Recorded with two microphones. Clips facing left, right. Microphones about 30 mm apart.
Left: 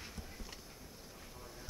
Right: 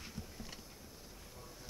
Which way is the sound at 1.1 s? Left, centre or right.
Centre.